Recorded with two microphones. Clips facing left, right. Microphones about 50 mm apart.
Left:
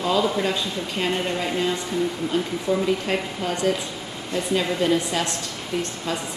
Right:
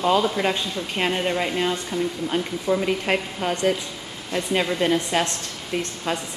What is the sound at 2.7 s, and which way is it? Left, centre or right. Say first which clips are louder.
A woman's voice: right 1 dB; right.